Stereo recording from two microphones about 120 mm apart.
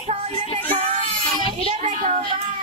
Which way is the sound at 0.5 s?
60° right (ahead or behind).